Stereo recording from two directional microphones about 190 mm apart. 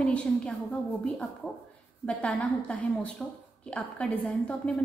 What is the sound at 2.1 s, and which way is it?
A woman's voice, 5° left (ahead or behind).